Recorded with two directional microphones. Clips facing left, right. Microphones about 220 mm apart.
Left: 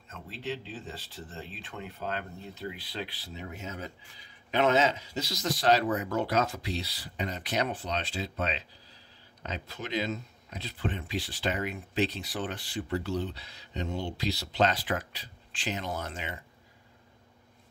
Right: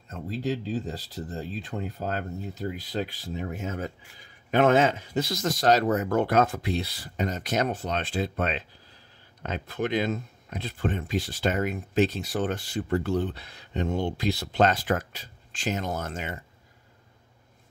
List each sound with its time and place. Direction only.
0.1 s speech: 40° right (ahead or behind)